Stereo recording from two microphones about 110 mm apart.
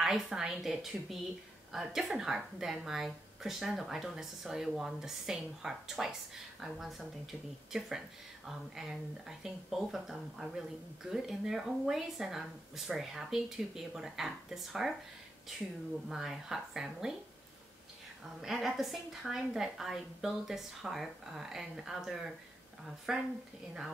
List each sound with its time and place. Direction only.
0.0 s speech: 5° right (ahead or behind)
16.1 s speech: 5° right (ahead or behind)
18.4 s speech: 5° right (ahead or behind)